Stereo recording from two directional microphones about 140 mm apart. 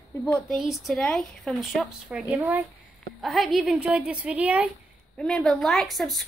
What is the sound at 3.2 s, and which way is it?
Speech, centre (ahead or behind).